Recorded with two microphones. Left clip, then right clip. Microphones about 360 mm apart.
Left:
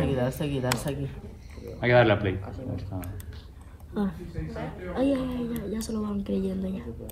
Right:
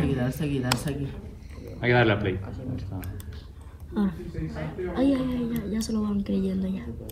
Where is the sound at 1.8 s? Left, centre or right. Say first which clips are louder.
Left 2 dB; left.